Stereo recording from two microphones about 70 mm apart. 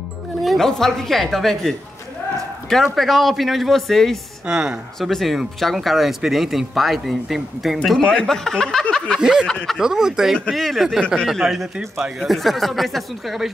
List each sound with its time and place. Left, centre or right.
0.4 s speech: centre
4.5 s speech: centre
4.9 s speech: centre
8.0 s speech: centre
9.2 s speech: centre
9.5 s speech: centre
9.8 s speech: centre